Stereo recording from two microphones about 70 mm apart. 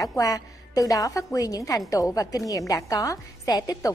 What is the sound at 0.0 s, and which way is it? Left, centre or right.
A woman's voice, left.